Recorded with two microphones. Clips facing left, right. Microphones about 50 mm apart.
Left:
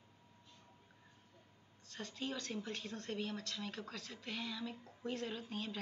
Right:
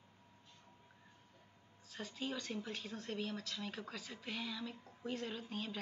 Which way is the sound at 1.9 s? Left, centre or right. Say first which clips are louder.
Even; centre.